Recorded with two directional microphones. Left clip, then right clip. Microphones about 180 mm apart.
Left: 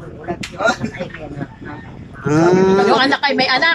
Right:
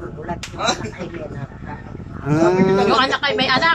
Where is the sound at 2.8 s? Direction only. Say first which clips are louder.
Left 3 dB; 25° left (ahead or behind).